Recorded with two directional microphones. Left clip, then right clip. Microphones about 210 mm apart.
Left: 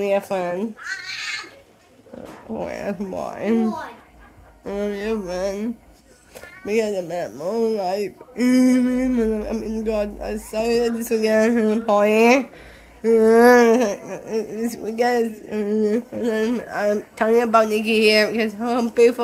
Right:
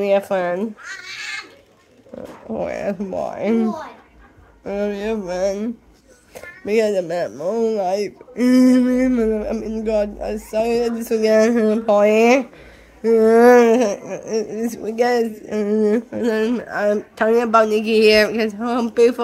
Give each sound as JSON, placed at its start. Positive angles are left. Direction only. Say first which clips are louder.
{"t": 0.0, "sound": "speech", "louder": "right 4 dB", "side_deg": -15}
{"t": 2.5, "sound": "speech", "louder": "right 4 dB", "side_deg": -20}
{"t": 4.6, "sound": "speech", "louder": "right 2 dB", "side_deg": -15}
{"t": 7.2, "sound": "speech", "louder": "right 2 dB", "side_deg": -15}